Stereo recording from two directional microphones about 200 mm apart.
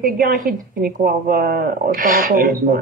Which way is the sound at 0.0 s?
45° right (ahead or behind).